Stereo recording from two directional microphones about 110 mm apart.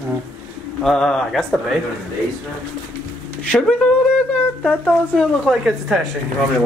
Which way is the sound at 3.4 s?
5° left (ahead or behind).